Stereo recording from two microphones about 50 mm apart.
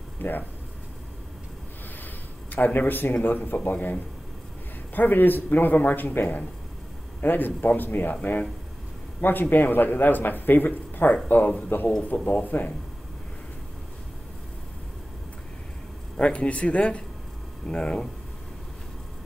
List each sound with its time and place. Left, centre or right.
0.2 s speech: left
2.5 s speech: left
7.2 s a man's voice: left
16.2 s speech: left
17.6 s speech: centre